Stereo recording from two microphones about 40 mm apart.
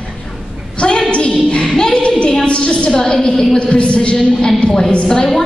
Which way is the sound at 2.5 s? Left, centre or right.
Left.